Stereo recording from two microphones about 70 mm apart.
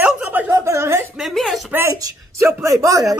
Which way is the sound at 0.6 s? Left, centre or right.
Right.